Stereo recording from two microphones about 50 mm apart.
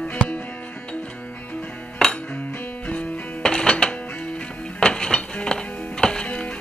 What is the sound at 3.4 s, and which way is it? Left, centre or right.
Music, centre.